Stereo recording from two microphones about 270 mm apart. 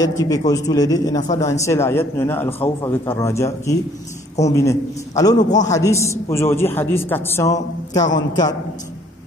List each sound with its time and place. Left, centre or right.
0.0 s a man's voice: centre
1.2 s speech: left
1.5 s a man's voice: centre
5.4 s speech: left
5.7 s a man's voice: centre